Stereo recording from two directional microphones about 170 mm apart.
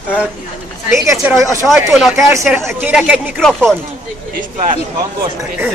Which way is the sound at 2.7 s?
10° right (ahead or behind).